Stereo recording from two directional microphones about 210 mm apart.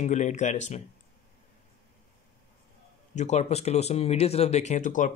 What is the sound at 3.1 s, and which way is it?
Speech, 35° left (ahead or behind).